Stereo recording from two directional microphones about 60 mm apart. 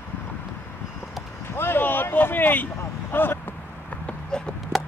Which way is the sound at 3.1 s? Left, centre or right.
Left.